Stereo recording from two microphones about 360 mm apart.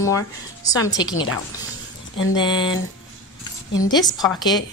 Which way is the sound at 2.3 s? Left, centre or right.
Centre.